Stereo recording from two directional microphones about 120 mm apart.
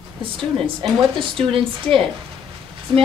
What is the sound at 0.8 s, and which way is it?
Speech, 45° right (ahead or behind).